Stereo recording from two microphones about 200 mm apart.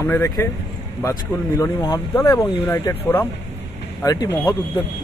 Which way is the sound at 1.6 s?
15° left (ahead or behind).